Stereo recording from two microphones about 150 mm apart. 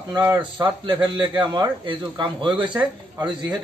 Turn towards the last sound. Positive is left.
turn(degrees=-30)  # may be behind; listen again after turning